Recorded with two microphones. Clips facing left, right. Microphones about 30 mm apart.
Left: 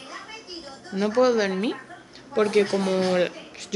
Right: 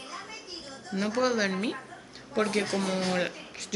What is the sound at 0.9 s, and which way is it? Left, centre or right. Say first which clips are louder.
Speech: left 7 dB; centre.